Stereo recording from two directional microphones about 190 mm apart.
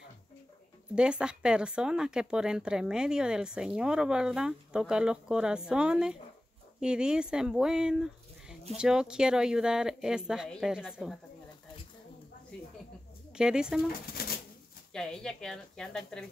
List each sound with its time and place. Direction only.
0.9 s speech: 5° right (ahead or behind)
13.3 s speech: 5° right (ahead or behind)
14.2 s pigeon: 55° left (ahead or behind)
14.9 s speech: 5° left (ahead or behind)